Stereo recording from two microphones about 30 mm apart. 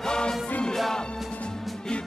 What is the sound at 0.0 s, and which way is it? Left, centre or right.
Music, left.